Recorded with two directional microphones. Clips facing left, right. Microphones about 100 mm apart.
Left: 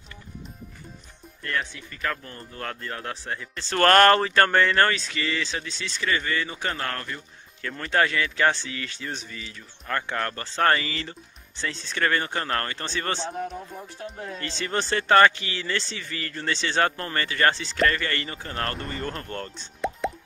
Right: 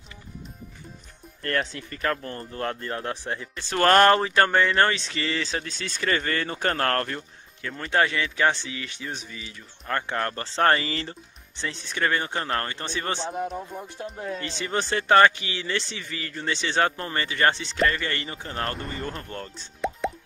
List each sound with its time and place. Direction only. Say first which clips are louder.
1.6 s speech: right 3 dB; 40° right (ahead or behind)
2.6 s speech: right 3 dB; 25° right (ahead or behind); by 7.2 s 55° right (ahead or behind)
7.9 s speech: even; 20° right (ahead or behind)
9.4 s speech: left 1 dB; 25° right (ahead or behind)
11.5 s speech: left 1 dB; 20° right (ahead or behind)
13.7 s speech: right 2 dB; 5° right (ahead or behind)
14.4 s speech: left 2 dB; 15° right (ahead or behind)
17.7 s speech: left 1 dB; centre (ahead or behind)
18.0 s speech: left 1 dB; 20° right (ahead or behind)
18.8 s speech: left 1 dB; centre (ahead or behind)